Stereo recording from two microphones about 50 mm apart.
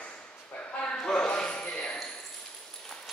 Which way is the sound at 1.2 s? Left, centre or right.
Left.